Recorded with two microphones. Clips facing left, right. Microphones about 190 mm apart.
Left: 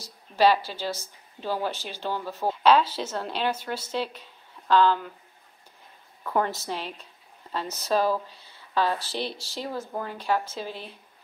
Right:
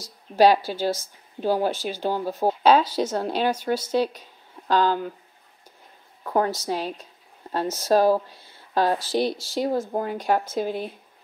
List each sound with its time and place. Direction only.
0.0 s speech: 45° right (ahead or behind)
6.2 s a woman's voice: 40° right (ahead or behind)